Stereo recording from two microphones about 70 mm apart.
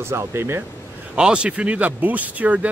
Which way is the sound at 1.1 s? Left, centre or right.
Centre.